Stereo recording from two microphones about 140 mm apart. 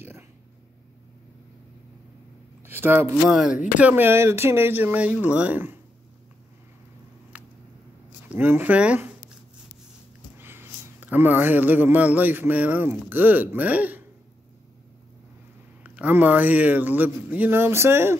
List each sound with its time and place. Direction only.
2.6 s a sound: 15° right (ahead or behind)
3.3 s a man's voice: centre (ahead or behind)
7.3 s a sound: 10° right (ahead or behind)
8.3 s a man's voice: 15° right (ahead or behind)
10.4 s a man's voice: 15° right (ahead or behind)
15.8 s a man's voice: 10° right (ahead or behind)